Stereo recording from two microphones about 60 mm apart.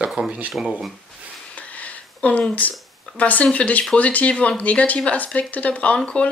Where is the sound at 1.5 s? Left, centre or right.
Left.